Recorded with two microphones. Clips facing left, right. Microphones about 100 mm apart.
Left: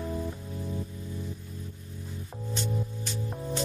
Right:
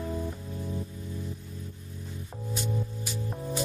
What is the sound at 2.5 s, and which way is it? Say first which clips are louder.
Music: even; 10° right (ahead or behind).